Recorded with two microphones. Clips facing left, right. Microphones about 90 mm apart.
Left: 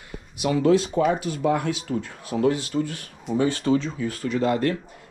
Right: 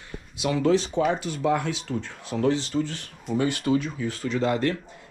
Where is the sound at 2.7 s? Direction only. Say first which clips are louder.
Left 1 dB; 15° left (ahead or behind).